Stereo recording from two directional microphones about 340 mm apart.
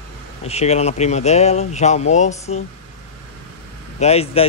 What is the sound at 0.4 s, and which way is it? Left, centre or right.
Speech, centre.